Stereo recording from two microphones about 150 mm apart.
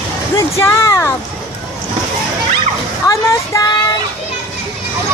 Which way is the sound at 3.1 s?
20° left (ahead or behind).